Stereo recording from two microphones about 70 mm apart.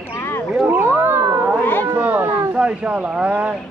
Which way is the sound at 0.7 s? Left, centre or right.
Right.